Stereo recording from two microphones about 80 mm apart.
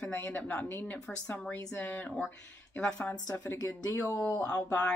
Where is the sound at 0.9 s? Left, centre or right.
Centre.